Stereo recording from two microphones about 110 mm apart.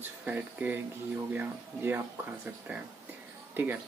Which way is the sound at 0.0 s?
15° right (ahead or behind).